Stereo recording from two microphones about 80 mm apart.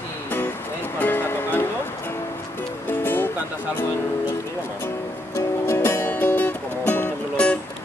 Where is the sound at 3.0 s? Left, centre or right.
Left.